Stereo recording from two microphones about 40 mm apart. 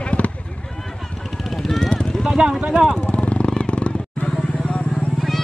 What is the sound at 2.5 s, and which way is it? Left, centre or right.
Speech, right.